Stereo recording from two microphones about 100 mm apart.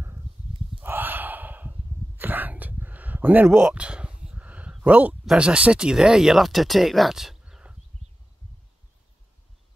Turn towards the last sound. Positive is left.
turn(degrees=-10)  # may be behind; listen again after turning